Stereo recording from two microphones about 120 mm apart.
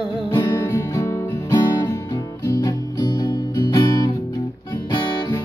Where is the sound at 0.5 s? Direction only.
20° left (ahead or behind).